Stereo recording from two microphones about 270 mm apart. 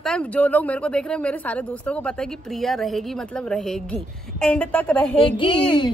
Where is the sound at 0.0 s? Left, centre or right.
Centre.